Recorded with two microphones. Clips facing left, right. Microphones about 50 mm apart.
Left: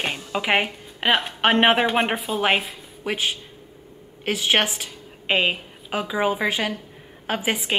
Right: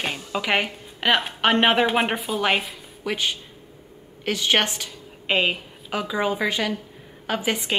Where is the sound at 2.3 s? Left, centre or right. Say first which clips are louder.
Left 2 dB; centre.